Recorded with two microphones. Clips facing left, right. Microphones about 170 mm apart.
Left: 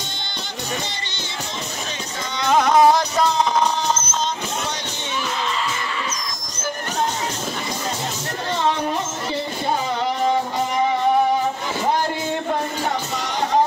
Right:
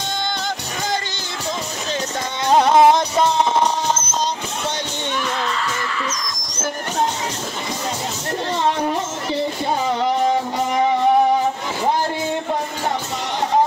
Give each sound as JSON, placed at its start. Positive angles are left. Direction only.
{"t": 2.5, "sound": "music", "side_deg": -25}